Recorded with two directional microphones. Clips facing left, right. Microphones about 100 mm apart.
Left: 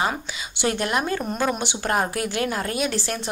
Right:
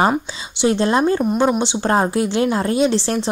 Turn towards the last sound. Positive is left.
turn(degrees=-30)  # may be behind; listen again after turning